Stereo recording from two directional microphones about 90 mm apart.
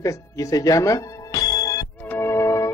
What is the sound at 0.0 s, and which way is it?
Speech, 40° left (ahead or behind).